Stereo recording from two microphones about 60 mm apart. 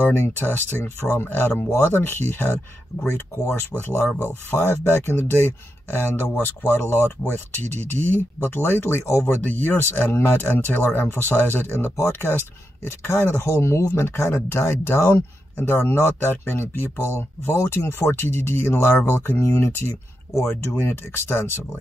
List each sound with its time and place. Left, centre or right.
0.0 s speech: left
9.2 s speech: left